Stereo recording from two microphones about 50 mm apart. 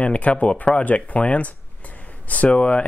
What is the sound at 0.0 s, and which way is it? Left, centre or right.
Speech, left.